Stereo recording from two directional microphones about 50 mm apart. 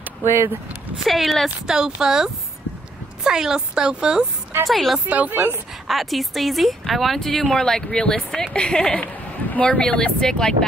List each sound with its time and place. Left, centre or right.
0.2 s speech: right
1.0 s speech: centre
2.0 s speech: centre
4.6 s speech: centre
5.0 s speech: right
5.9 s speech: centre
9.0 s speech: left